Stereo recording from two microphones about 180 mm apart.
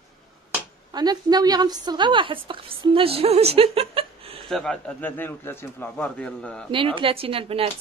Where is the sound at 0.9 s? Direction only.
20° right (ahead or behind).